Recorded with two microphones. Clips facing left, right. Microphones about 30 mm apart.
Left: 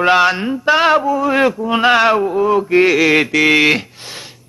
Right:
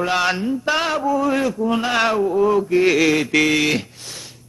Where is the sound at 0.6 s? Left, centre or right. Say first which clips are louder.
Left 10 dB; centre.